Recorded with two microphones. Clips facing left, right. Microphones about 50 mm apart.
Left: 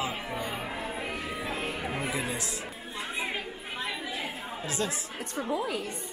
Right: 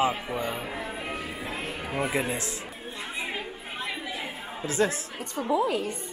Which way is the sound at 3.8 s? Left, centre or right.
Right.